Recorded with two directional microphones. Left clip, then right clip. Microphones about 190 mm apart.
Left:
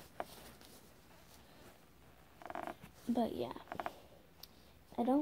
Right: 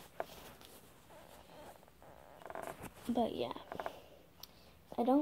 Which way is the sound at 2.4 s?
45° left (ahead or behind).